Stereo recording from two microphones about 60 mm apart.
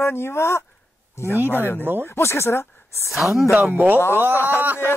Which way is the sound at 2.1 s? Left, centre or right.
Left.